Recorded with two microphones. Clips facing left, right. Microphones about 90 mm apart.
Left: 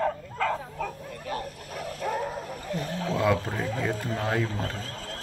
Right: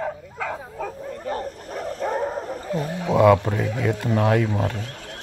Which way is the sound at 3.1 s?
90° right.